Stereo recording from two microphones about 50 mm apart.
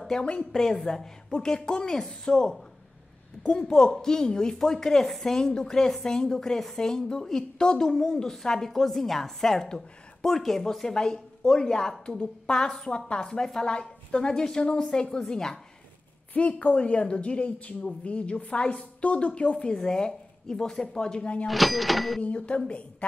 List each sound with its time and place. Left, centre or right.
0.2 s speech: left
0.5 s speech: centre
3.6 s speech: centre
16.3 s speech: left
21.5 s speech: centre
22.2 s speech: left